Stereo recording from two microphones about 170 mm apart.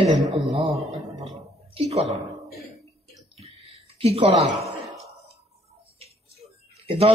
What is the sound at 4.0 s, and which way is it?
Speech, 35° right (ahead or behind).